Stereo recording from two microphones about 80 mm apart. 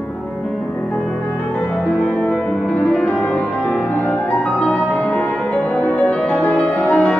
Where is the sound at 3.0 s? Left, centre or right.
Centre.